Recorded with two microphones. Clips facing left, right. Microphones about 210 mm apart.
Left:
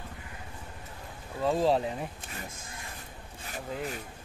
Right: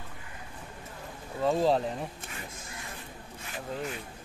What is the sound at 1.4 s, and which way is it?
Speech, centre (ahead or behind).